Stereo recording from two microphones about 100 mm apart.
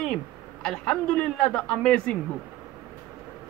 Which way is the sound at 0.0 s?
10° left (ahead or behind).